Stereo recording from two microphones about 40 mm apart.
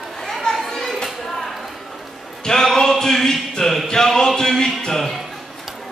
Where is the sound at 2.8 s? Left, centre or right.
Centre.